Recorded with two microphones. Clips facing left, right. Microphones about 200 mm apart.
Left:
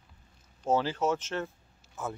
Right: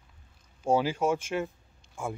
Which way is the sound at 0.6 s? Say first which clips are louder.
Right 2 dB; 10° right (ahead or behind).